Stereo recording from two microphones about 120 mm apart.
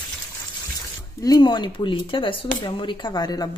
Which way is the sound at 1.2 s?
35° left (ahead or behind).